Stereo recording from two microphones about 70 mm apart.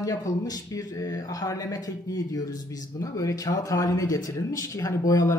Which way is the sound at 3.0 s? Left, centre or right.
Left.